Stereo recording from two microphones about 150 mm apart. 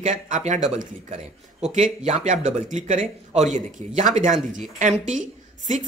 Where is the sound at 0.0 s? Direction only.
55° right (ahead or behind).